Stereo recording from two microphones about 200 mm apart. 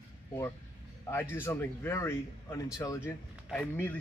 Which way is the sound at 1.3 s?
10° left (ahead or behind).